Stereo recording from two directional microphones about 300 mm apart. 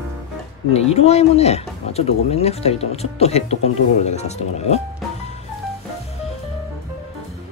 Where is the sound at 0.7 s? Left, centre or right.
Left.